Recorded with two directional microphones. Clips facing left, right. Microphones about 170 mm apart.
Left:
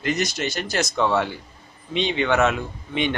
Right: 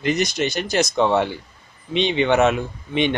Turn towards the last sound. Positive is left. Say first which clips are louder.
# right 3 dB
turn(degrees=-20)  # may be behind; listen again after turning